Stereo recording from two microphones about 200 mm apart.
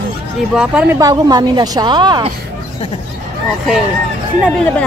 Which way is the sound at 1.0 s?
20° right (ahead or behind).